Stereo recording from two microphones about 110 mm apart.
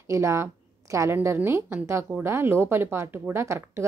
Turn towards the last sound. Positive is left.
turn(degrees=-25)  # may be behind; listen again after turning